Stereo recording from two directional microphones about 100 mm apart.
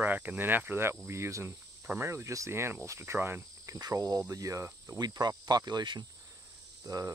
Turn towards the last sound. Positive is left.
turn(degrees=-35)  # may be behind; listen again after turning